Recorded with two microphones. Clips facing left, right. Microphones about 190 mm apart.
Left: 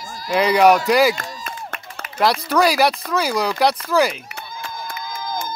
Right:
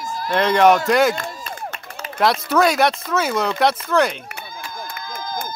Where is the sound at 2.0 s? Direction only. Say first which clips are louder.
Right 4 dB; 30° right (ahead or behind).